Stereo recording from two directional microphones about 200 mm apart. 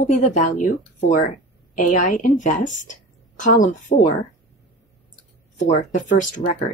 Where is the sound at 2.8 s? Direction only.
40° left (ahead or behind).